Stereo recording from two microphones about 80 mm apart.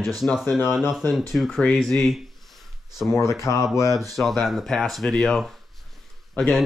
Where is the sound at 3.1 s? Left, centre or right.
Left.